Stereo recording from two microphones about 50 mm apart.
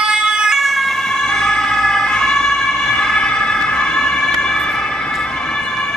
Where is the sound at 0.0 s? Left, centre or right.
Centre.